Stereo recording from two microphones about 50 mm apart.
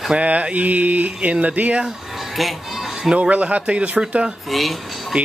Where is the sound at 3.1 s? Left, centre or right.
Right.